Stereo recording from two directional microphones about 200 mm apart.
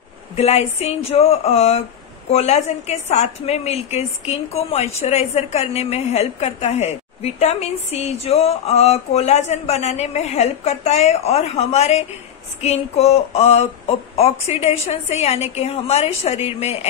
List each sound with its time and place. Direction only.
0.4 s a woman's voice: 30° left (ahead or behind)